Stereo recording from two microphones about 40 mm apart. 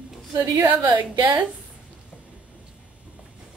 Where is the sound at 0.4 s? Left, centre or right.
Right.